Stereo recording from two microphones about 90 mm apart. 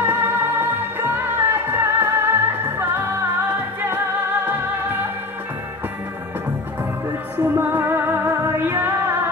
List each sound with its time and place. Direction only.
0.0 s music: 20° right (ahead or behind)
7.3 s music: 30° right (ahead or behind)